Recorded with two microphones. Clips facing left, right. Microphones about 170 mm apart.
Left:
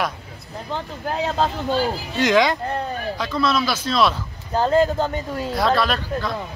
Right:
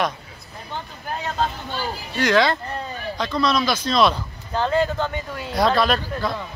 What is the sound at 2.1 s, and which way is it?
Speech, 20° left (ahead or behind).